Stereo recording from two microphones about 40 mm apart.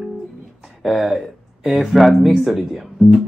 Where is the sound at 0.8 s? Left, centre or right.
Centre.